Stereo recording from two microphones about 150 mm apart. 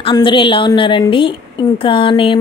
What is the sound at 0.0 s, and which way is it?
A woman's voice, 35° left (ahead or behind).